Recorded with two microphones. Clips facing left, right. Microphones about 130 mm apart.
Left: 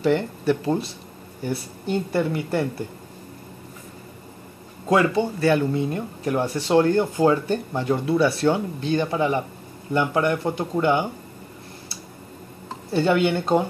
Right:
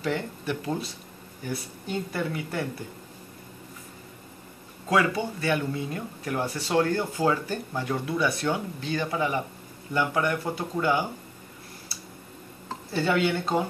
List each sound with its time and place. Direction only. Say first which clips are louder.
0.0 s speech: left 8 dB; 30° left (ahead or behind)
4.8 s speech: left 5 dB; 30° left (ahead or behind)
12.9 s speech: left 5 dB; 25° left (ahead or behind)